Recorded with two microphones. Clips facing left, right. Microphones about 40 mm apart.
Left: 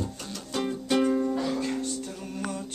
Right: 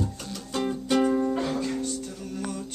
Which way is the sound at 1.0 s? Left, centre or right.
Centre.